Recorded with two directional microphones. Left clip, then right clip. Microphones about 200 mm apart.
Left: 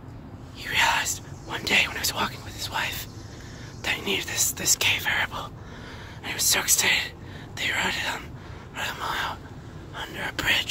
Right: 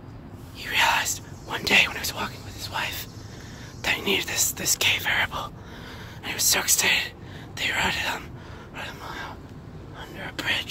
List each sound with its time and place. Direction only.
0.6 s whispering: 10° right (ahead or behind)
2.0 s a sound: 10° left (ahead or behind)
2.7 s whispering: 5° right (ahead or behind)
3.8 s speech: 15° right (ahead or behind)
8.9 s speech: 15° left (ahead or behind)